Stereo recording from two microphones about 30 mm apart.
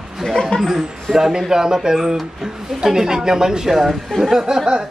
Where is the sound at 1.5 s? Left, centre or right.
Centre.